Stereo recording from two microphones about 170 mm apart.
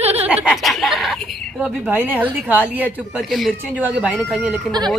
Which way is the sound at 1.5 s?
10° right (ahead or behind).